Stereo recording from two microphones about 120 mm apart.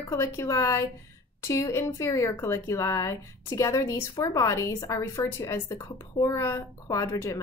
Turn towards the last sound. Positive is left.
turn(degrees=25)  # may be behind; listen again after turning